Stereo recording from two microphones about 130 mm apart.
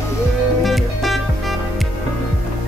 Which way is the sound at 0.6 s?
Centre (ahead or behind).